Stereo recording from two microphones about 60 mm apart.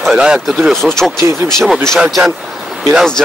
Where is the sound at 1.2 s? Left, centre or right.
Right.